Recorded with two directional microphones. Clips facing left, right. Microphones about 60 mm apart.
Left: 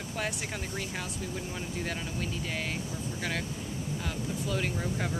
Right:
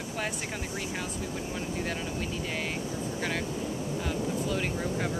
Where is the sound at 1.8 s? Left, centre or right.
Centre.